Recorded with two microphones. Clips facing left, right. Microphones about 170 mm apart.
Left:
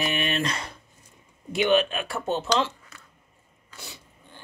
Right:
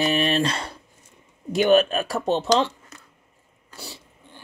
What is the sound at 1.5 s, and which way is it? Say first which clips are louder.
Speech: right 4 dB; 40° right (ahead or behind).